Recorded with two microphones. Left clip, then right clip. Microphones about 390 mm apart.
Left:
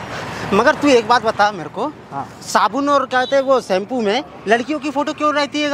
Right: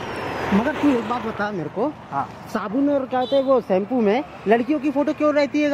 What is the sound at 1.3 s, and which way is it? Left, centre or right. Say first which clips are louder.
Speech: left 7 dB; left.